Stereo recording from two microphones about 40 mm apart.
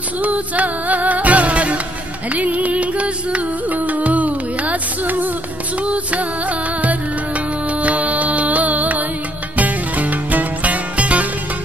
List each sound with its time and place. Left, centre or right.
0.2 s music: right
7.8 s music: right